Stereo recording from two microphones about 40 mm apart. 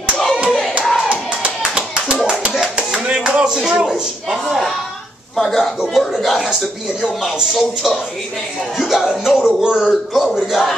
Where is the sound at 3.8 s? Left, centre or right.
Centre.